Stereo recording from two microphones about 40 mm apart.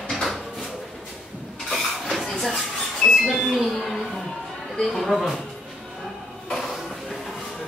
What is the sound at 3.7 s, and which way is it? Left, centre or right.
Music, centre.